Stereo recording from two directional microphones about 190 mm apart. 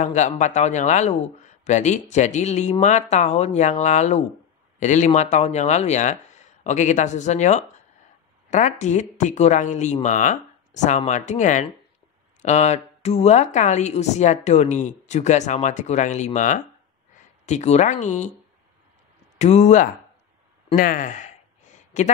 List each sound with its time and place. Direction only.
0.0 s a woman's voice: 40° left (ahead or behind)
19.3 s a woman's voice: 35° left (ahead or behind)